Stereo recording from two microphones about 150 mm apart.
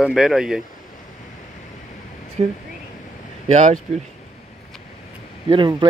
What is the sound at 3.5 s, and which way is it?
Speech, 55° right (ahead or behind).